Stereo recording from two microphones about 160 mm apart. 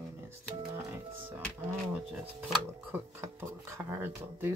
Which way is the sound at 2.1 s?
5° right (ahead or behind).